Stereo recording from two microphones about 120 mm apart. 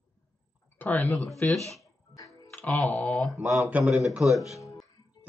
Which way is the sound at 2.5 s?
10° left (ahead or behind).